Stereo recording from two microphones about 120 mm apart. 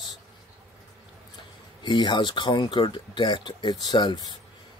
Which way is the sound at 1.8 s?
40° left (ahead or behind).